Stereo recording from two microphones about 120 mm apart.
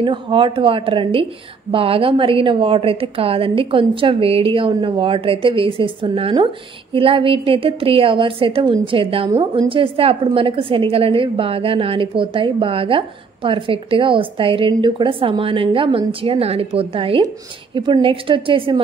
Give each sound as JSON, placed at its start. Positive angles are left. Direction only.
{"t": 0.0, "sound": "a woman's voice", "side_deg": -45}
{"t": 9.4, "sound": "a woman's voice", "side_deg": -35}